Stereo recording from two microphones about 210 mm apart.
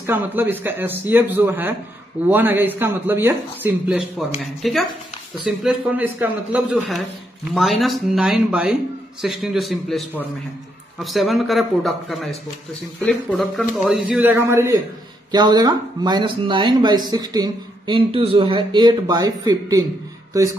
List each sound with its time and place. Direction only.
0.0 s a man's voice: 10° right (ahead or behind)